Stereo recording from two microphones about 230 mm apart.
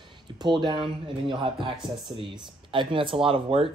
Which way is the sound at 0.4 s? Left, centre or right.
Centre.